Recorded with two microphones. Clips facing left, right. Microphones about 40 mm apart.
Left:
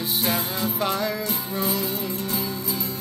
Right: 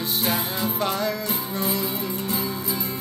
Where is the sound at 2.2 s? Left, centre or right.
Right.